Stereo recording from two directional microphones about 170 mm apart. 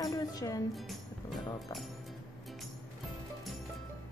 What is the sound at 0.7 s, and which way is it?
Speech, centre (ahead or behind).